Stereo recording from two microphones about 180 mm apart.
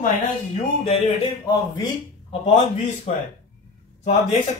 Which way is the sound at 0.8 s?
35° left (ahead or behind).